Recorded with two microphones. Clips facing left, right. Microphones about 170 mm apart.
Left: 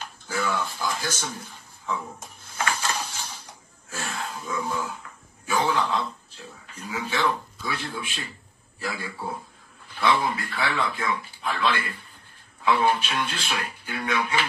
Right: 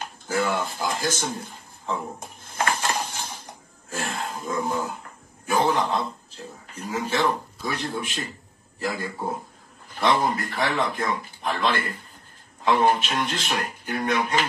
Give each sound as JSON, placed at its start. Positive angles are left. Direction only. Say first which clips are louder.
{"t": 0.5, "sound": "speech", "louder": "right 2 dB", "side_deg": -50}
{"t": 1.4, "sound": "a sound", "louder": "right 3 dB", "side_deg": -30}
{"t": 2.1, "sound": "dishes", "louder": "right 3 dB", "side_deg": -50}
{"t": 3.9, "sound": "wild animals", "louder": "right 3 dB", "side_deg": -50}
{"t": 4.4, "sound": "a man's voice", "louder": "right 3 dB", "side_deg": -45}